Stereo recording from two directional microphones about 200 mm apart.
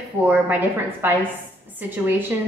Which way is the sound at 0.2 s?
10° right (ahead or behind).